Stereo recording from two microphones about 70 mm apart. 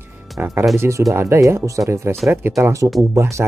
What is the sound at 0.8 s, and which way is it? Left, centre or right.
Speech, right.